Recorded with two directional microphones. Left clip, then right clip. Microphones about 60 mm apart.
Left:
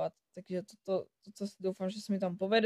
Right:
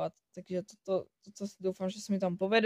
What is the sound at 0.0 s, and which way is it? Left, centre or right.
Speech, right.